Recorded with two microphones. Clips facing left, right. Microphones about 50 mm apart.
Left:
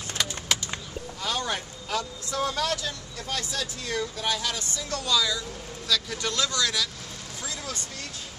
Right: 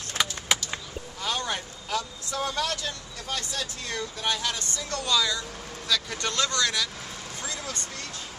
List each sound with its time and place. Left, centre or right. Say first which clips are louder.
0.5 s bird: right 1 dB; centre
1.2 s speech: even; centre